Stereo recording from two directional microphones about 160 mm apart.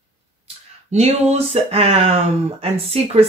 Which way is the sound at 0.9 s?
40° right (ahead or behind).